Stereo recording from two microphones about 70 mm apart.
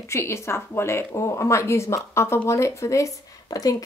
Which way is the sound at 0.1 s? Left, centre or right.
Left.